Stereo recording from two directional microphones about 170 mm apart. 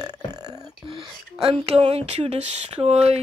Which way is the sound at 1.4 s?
35° right (ahead or behind).